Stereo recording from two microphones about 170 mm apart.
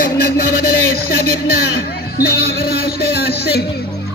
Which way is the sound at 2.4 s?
65° left (ahead or behind).